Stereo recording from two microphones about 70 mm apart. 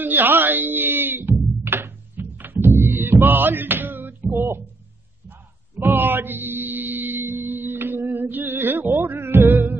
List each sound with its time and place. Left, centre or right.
0.0 s music: right
5.8 s music: right